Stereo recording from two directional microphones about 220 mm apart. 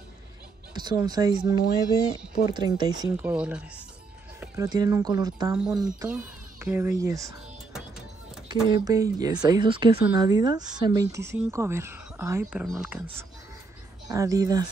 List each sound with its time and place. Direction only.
0.7 s a woman's voice: 20° right (ahead or behind)
8.6 s a woman's voice: 20° right (ahead or behind)